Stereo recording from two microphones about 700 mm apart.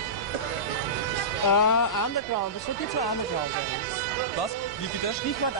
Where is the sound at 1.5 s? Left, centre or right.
Left.